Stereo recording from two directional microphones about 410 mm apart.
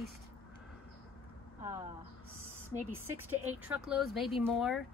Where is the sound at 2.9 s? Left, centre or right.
Centre.